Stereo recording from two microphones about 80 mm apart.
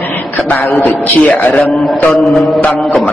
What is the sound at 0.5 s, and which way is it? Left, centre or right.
A man's voice, left.